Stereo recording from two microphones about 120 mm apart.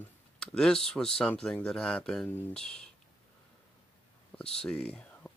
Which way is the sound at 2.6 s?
5° left (ahead or behind).